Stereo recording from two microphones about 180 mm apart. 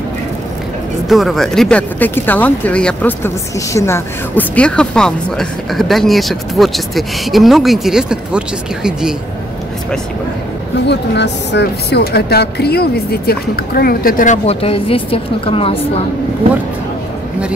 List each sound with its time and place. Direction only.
1.0 s speech: centre (ahead or behind)
10.9 s speech: 70° left (ahead or behind); by 15.9 s 30° left (ahead or behind)